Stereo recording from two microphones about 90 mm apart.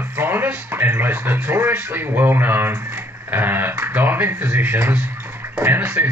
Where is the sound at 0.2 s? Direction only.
25° right (ahead or behind).